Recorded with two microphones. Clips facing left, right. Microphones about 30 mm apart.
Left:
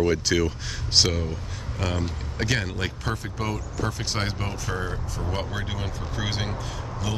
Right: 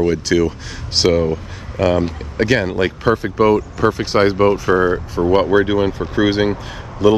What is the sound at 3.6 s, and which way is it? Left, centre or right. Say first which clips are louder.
Speech: right 13 dB; right.